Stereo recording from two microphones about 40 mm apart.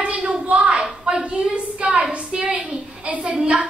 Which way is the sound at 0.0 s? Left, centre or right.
Right.